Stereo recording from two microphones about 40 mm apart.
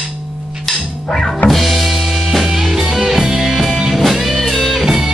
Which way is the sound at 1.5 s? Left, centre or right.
Centre.